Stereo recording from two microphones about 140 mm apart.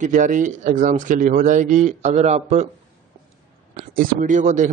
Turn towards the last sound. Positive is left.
turn(degrees=-60)  # may be behind; listen again after turning